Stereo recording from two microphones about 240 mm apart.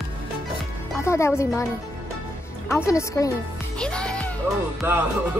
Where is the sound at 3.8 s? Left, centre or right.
Centre.